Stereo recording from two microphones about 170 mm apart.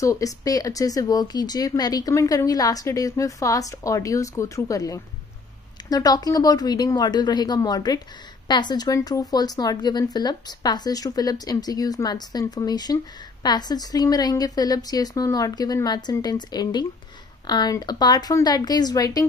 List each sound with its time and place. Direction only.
0.0 s speech: 20° left (ahead or behind)